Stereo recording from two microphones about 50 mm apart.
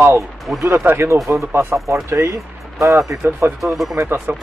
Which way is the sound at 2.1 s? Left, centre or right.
Right.